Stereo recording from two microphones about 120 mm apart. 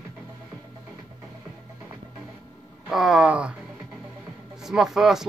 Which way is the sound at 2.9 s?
5° right (ahead or behind).